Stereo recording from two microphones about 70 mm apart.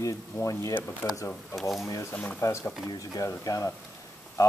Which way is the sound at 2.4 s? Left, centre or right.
Left.